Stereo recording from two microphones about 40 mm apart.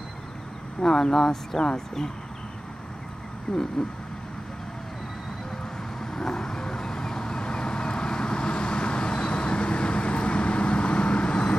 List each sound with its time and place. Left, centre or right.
0.8 s speech: centre
3.5 s a sound: centre
5.9 s vehicle: centre